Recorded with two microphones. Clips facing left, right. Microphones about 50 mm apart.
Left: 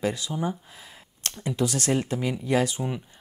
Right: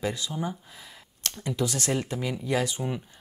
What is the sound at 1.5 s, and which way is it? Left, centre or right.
Speech, left.